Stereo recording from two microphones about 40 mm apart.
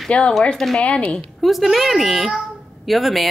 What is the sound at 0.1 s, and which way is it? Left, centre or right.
Speech, left.